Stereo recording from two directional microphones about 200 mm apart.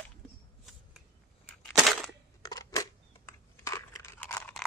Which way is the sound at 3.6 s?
15° left (ahead or behind).